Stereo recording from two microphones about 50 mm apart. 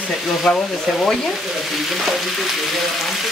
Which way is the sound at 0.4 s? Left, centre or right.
Centre.